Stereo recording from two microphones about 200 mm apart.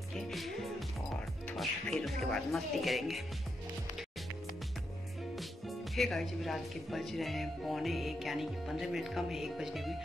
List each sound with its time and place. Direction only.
0.1 s music: centre (ahead or behind)
2.3 s speech: centre (ahead or behind)
5.7 s speech: centre (ahead or behind)